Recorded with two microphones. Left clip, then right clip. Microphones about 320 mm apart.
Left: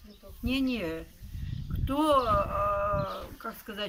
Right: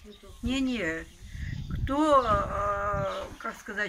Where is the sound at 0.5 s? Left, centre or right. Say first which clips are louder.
Right 1 dB; centre.